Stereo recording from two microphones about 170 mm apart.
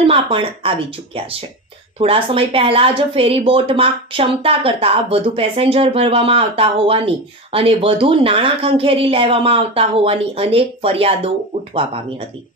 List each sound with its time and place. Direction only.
0.0 s speech: 30° right (ahead or behind)